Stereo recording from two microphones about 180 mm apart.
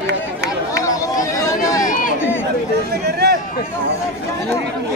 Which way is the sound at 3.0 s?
65° right (ahead or behind).